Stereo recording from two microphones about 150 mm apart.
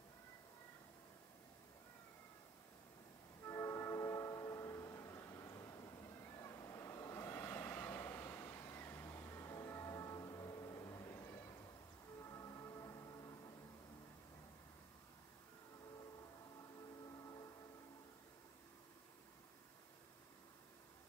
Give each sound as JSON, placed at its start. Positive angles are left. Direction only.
{"t": 3.4, "sound": "music", "side_deg": 20}